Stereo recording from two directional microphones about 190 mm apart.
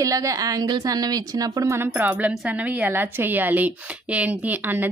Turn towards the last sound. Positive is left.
turn(degrees=-10)  # may be behind; listen again after turning